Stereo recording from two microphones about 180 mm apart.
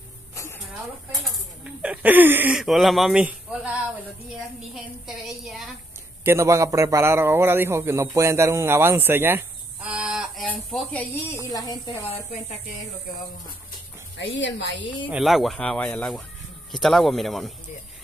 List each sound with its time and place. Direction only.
1.2 s a man's voice: 5° right (ahead or behind)
4.7 s speech: centre (ahead or behind)
6.2 s a man's voice: 15° right (ahead or behind); by 11.3 s 5° left (ahead or behind)
11.5 s a woman's voice: 20° left (ahead or behind)
14.1 s speech: 85° left
15.0 s speech: centre (ahead or behind)